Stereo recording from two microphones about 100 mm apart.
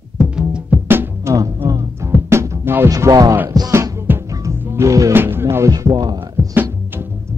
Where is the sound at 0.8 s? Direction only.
20° right (ahead or behind).